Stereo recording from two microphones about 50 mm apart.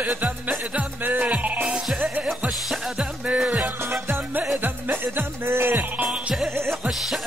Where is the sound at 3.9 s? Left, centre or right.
Right.